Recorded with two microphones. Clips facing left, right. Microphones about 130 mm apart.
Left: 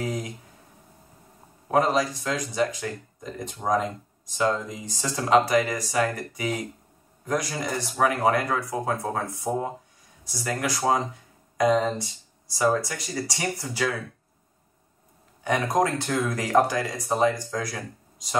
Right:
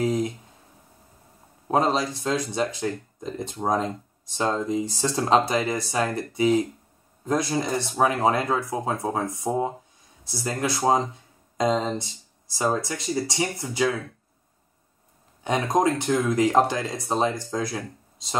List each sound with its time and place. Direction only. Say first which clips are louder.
0.0 s a sound: right 6 dB; 30° right (ahead or behind)
1.7 s speech: even; 25° right (ahead or behind)
7.2 s speech: right 3 dB; 25° right (ahead or behind)
15.4 s speech: right 1 dB; 20° right (ahead or behind)